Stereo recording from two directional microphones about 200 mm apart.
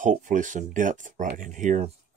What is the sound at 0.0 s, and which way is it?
Speech, 40° right (ahead or behind).